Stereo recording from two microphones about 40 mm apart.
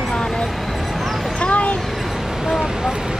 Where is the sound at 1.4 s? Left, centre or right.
Left.